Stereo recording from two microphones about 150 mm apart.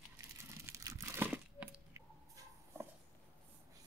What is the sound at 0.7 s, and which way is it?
Crumpling, 20° right (ahead or behind).